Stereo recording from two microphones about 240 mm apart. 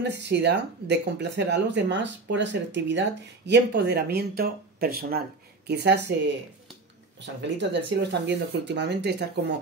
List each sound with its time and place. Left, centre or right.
0.2 s speech: right
7.2 s speech: right